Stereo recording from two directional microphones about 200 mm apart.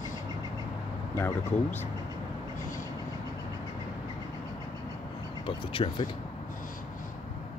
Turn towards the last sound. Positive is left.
turn(degrees=25)  # may be behind; listen again after turning